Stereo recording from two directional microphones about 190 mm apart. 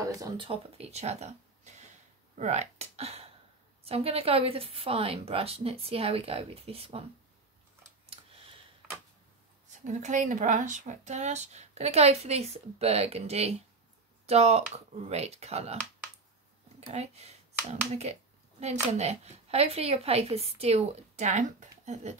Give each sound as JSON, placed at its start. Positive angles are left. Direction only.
{"t": 0.1, "sound": "speech", "side_deg": -15}
{"t": 0.5, "sound": "speech", "side_deg": -35}
{"t": 8.1, "sound": "a sound", "side_deg": -30}
{"t": 9.7, "sound": "speech", "side_deg": -40}
{"t": 16.8, "sound": "speech", "side_deg": -35}